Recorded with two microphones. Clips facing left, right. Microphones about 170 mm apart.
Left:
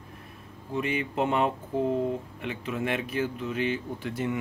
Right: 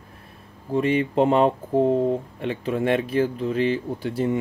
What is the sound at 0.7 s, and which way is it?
Speech, 35° right (ahead or behind).